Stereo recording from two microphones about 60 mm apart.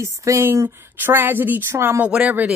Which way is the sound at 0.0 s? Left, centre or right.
Right.